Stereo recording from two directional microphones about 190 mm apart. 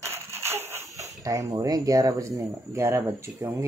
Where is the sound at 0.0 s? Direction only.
15° right (ahead or behind).